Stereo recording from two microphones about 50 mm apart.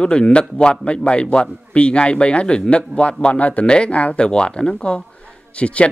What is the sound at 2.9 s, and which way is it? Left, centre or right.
Speech, right.